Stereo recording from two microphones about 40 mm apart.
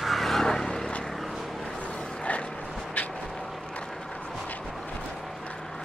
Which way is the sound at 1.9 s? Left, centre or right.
Centre.